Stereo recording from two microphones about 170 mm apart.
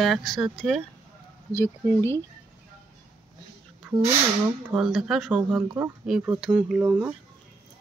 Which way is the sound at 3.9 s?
5° right (ahead or behind).